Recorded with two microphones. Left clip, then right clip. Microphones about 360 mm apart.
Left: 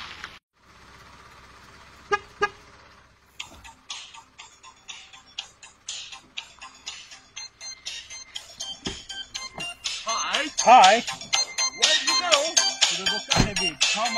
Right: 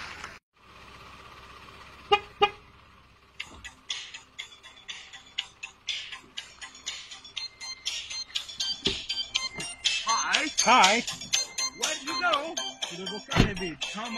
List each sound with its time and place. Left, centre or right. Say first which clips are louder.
3.3 s music: left 1 dB; left
13.6 s speech: left 11 dB; left